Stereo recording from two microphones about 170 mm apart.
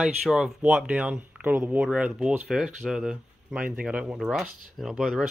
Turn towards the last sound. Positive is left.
turn(degrees=0)  # may be behind; listen again after turning